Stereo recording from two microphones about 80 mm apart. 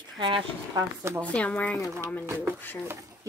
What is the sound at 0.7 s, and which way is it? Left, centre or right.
Speech, right.